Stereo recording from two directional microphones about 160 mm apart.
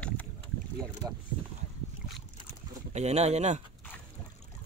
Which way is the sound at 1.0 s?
15° right (ahead or behind).